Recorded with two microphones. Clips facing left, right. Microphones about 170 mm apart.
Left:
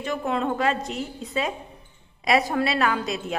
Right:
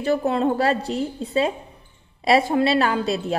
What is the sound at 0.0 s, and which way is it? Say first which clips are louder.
A woman's voice: right 6 dB; 35° right (ahead or behind).